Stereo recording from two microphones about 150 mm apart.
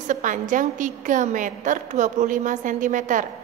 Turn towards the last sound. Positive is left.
turn(degrees=-60)  # may be behind; listen again after turning